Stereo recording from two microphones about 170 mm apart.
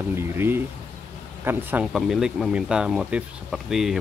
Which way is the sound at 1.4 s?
10° right (ahead or behind).